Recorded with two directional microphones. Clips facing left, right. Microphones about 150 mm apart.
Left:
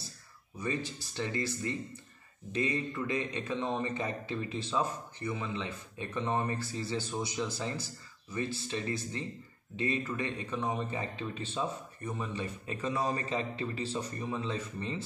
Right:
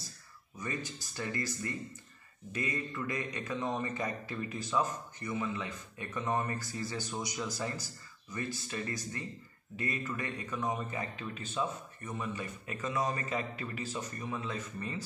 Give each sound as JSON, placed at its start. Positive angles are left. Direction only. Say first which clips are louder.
{"t": 1.1, "sound": "a man's voice", "louder": "left 3 dB", "side_deg": 25}